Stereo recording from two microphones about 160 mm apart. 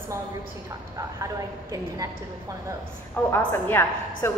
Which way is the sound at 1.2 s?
20° right (ahead or behind).